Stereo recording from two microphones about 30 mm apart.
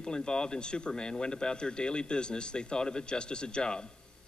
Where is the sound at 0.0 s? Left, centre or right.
Left.